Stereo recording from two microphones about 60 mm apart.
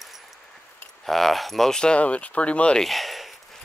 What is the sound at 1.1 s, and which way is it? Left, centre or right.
Speech, centre.